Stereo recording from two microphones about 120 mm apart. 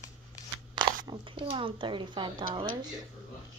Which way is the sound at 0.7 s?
45° right (ahead or behind).